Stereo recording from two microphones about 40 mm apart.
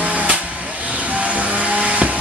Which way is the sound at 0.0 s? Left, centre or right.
Right.